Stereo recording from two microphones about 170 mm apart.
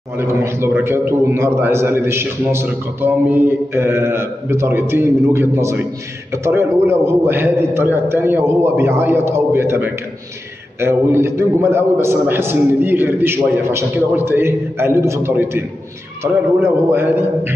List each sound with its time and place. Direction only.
0.2 s a man's voice: 15° right (ahead or behind)